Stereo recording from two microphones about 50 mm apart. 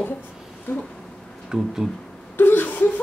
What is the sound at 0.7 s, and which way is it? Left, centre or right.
Speech, left.